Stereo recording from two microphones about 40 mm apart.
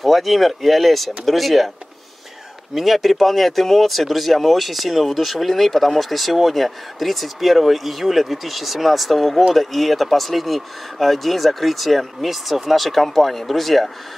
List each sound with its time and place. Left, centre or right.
0.0 s speech: centre
2.7 s speech: centre